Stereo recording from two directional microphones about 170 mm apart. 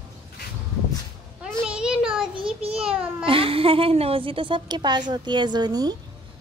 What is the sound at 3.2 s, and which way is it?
A woman's voice, 30° right (ahead or behind).